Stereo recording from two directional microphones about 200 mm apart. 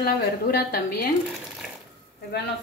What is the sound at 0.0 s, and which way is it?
Speech, 50° left (ahead or behind).